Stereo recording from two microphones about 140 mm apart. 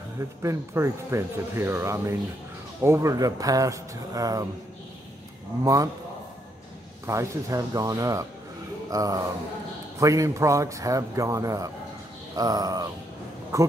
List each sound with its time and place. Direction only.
0.4 s a man's voice: 20° right (ahead or behind)
5.6 s a man's voice: 25° right (ahead or behind)
7.1 s a man's voice: 20° right (ahead or behind)